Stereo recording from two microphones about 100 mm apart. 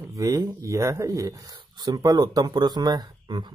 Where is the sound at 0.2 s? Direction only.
35° right (ahead or behind).